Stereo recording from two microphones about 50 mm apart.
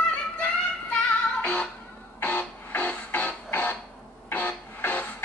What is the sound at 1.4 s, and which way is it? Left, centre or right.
Music, left.